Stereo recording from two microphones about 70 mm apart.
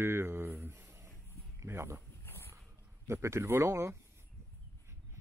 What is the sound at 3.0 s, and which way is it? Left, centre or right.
Speech, right.